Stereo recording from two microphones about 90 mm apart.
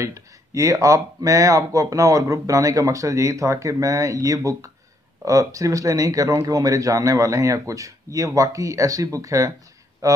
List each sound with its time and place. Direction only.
0.0 s speech: 35° right (ahead or behind)